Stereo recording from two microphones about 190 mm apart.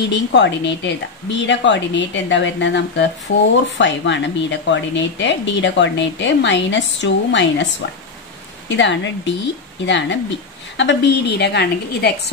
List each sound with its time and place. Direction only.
0.1 s a woman's voice: 65° left (ahead or behind)
8.6 s a woman's voice: 70° left (ahead or behind)